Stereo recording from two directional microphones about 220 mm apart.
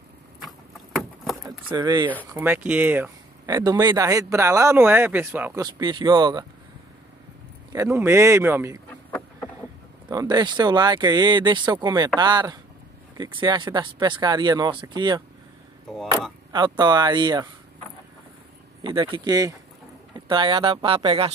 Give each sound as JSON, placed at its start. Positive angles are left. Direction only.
{"t": 1.7, "sound": "speech", "side_deg": -20}
{"t": 2.3, "sound": "speech", "side_deg": -10}
{"t": 7.7, "sound": "speech", "side_deg": -10}
{"t": 10.0, "sound": "speech", "side_deg": -20}
{"t": 16.5, "sound": "speech", "side_deg": -20}
{"t": 18.8, "sound": "speech", "side_deg": -20}